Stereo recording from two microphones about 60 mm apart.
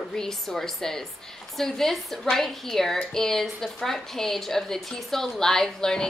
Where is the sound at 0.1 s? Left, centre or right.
Centre.